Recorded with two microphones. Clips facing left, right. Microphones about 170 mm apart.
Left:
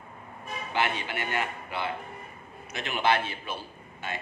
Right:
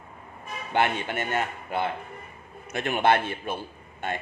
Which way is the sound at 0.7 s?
50° right (ahead or behind).